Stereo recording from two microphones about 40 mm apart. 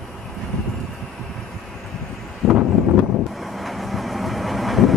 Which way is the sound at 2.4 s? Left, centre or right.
Centre.